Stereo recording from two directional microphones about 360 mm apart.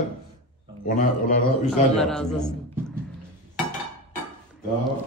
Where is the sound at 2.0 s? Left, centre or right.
Centre.